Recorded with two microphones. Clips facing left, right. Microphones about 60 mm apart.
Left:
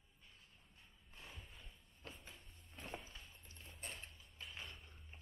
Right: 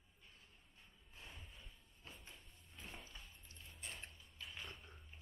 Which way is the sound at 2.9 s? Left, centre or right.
Centre.